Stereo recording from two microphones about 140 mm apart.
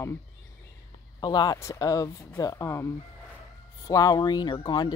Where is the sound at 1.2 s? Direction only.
30° left (ahead or behind).